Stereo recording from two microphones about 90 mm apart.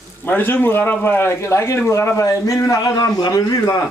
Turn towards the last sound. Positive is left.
turn(degrees=45)  # may be behind; listen again after turning